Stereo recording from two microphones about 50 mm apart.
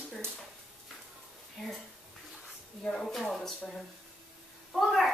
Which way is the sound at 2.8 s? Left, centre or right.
Centre.